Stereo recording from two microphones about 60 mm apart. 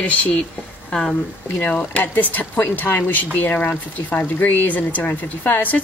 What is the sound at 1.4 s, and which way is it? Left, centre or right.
A woman's voice, left.